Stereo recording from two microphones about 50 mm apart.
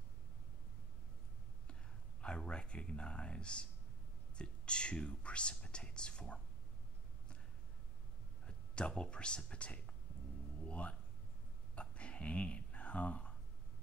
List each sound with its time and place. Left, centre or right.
2.2 s speech: left
8.5 s speech: centre
11.7 s a sound: left